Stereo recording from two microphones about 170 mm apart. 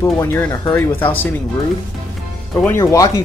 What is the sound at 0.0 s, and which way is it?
Speech, 15° left (ahead or behind).